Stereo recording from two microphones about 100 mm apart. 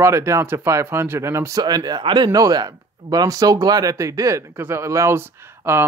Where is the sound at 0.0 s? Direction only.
30° right (ahead or behind).